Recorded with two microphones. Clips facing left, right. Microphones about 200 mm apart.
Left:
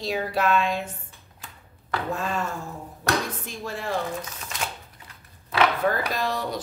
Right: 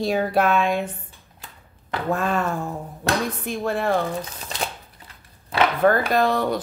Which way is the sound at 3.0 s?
25° right (ahead or behind).